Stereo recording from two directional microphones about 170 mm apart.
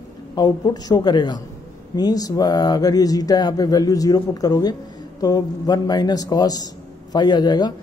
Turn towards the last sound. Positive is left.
turn(degrees=25)  # may be behind; listen again after turning